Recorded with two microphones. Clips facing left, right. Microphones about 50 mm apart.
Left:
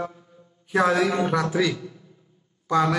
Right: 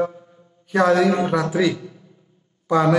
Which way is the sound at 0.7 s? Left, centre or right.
Centre.